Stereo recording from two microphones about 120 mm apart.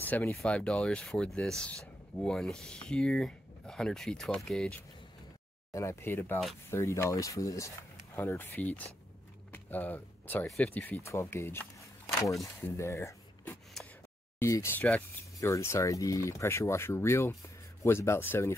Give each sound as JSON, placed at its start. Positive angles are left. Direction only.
{"t": 0.0, "sound": "speech", "side_deg": 15}
{"t": 5.7, "sound": "speech", "side_deg": 25}
{"t": 9.5, "sound": "a sound", "side_deg": 15}
{"t": 10.5, "sound": "speech", "side_deg": 10}